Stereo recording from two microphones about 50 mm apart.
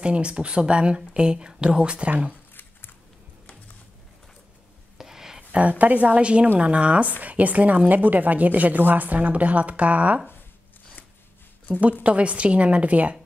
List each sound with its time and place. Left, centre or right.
0.0 s speech: right
4.9 s a sound: centre
5.5 s a woman's voice: right
12.0 s speech: right